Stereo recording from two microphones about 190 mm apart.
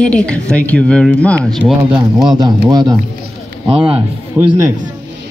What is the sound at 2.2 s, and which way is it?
Speech, 20° right (ahead or behind).